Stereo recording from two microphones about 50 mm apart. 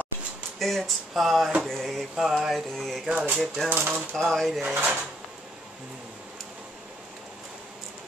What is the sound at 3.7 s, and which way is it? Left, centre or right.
Speech, right.